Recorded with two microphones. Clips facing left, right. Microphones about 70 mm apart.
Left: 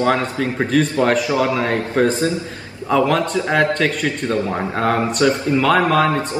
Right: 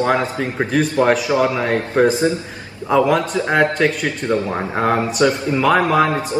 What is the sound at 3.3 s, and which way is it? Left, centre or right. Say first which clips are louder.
Speech: right 1 dB; right.